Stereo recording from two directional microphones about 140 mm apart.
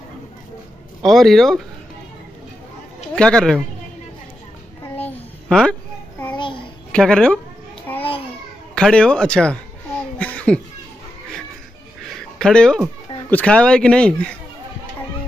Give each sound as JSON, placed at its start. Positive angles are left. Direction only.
{"t": 1.0, "sound": "speech", "side_deg": 0}
{"t": 3.2, "sound": "speech", "side_deg": 5}
{"t": 4.9, "sound": "a sound", "side_deg": 15}
{"t": 5.5, "sound": "speech", "side_deg": 5}
{"t": 6.2, "sound": "child singing", "side_deg": 35}
{"t": 6.9, "sound": "a woman's voice", "side_deg": 5}
{"t": 8.7, "sound": "a sound", "side_deg": 5}
{"t": 12.2, "sound": "speech", "side_deg": 5}